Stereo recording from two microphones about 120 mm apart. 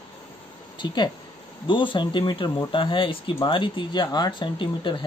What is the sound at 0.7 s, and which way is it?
Speech, 40° left (ahead or behind).